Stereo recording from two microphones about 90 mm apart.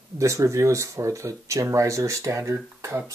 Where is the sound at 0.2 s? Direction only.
35° right (ahead or behind).